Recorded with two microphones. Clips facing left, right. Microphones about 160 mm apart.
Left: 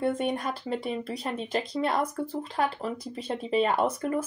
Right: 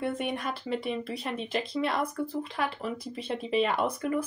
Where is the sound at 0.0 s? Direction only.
40° left (ahead or behind).